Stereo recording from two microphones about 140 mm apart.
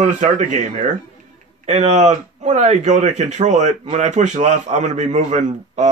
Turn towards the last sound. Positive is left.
turn(degrees=-60)  # may be behind; listen again after turning